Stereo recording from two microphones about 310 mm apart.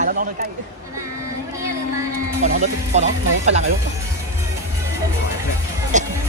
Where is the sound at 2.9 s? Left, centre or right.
Right.